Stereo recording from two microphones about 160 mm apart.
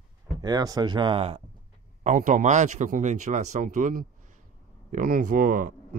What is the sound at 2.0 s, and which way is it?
Speech, 55° right (ahead or behind).